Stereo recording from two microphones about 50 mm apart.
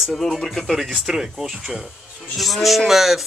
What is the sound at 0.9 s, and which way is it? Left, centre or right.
A man's voice, centre.